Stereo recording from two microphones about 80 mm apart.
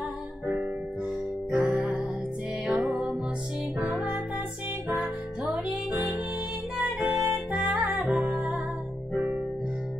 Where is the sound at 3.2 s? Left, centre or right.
Centre.